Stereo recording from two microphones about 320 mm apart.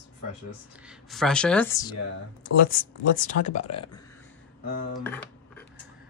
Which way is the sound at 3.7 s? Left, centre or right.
Centre.